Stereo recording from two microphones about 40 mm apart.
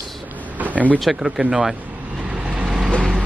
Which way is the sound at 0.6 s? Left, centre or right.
Right.